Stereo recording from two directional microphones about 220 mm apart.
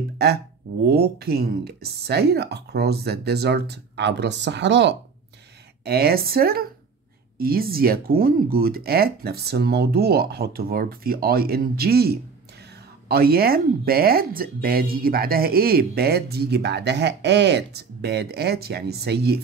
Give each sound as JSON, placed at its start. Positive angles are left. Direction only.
{"t": 0.8, "sound": "speech", "side_deg": -45}